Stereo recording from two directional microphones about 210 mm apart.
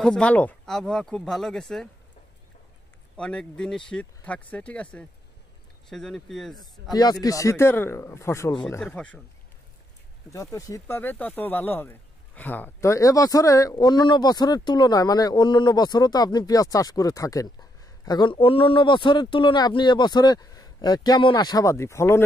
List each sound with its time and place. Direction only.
0.0 s speech: 5° left (ahead or behind)
3.2 s speech: 5° left (ahead or behind)
7.0 s speech: 20° left (ahead or behind)
8.6 s speech: 5° left (ahead or behind)
10.3 s speech: 15° left (ahead or behind)